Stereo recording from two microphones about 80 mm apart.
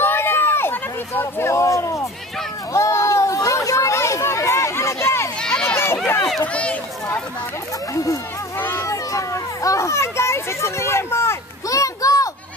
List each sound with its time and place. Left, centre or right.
0.0 s hubbub: left
2.7 s chatter: left
5.5 s a sound: centre
6.4 s speech: centre
7.9 s speech: left
8.5 s children playing: left